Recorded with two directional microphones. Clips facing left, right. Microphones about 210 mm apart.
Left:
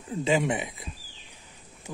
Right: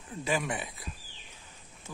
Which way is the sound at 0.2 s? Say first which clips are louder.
Left 6 dB; 25° left (ahead or behind).